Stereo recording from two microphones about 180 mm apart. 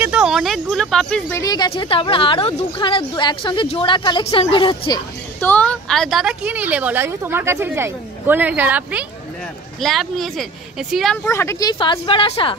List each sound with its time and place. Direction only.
0.0 s speech: 5° right (ahead or behind)
1.3 s speech: 20° left (ahead or behind)
5.4 s a woman's voice: 10° left (ahead or behind); by 9.0 s 10° right (ahead or behind)
9.8 s speech: centre (ahead or behind)
11.2 s speech: 15° left (ahead or behind)
11.8 s speech: 30° left (ahead or behind)